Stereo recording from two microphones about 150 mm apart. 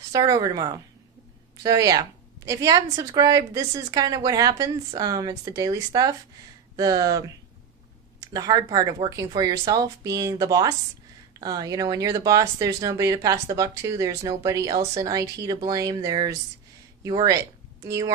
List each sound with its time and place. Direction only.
0.1 s a woman's voice: 25° right (ahead or behind)
6.8 s a woman's voice: 25° right (ahead or behind)
8.3 s a woman's voice: 25° right (ahead or behind)